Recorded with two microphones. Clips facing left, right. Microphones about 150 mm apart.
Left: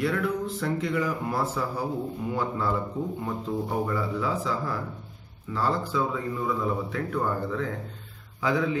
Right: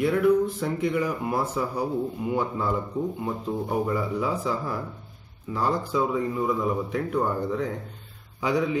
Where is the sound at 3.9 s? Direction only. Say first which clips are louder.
Right 2 dB; 15° right (ahead or behind).